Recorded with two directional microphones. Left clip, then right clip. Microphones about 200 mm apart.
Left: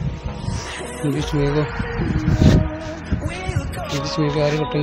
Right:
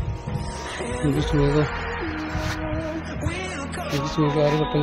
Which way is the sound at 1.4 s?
30° right (ahead or behind).